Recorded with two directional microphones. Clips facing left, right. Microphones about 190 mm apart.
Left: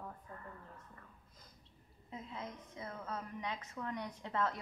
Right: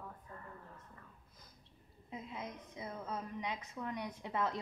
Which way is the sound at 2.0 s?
15° right (ahead or behind).